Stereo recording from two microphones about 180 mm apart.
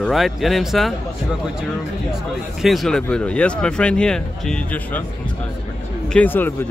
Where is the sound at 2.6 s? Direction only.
Centre (ahead or behind).